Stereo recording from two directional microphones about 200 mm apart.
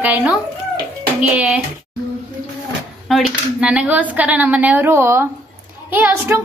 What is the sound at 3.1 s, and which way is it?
Speech, 5° right (ahead or behind).